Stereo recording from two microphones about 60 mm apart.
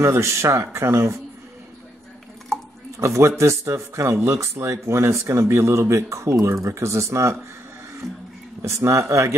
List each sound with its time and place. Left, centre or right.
0.0 s speech: right
3.0 s speech: right
8.6 s speech: right